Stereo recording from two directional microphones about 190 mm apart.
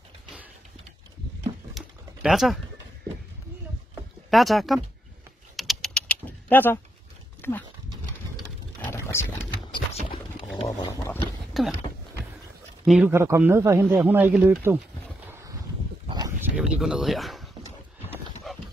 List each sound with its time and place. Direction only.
1.7 s typing: centre (ahead or behind)
4.3 s speech: centre (ahead or behind)
5.6 s typing: centre (ahead or behind)
7.4 s speech: 10° left (ahead or behind)
8.8 s a sound: 15° left (ahead or behind)
10.8 s speech: 15° left (ahead or behind)
11.6 s a sound: centre (ahead or behind)
12.8 s speech: 5° right (ahead or behind)
13.1 s speech: 15° right (ahead or behind)
15.2 s boat: 10° right (ahead or behind)
16.1 s a sound: 20° right (ahead or behind)
16.5 s a sound: 5° right (ahead or behind)
18.5 s dog: centre (ahead or behind)